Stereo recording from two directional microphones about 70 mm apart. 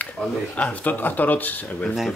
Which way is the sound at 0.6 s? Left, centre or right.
Left.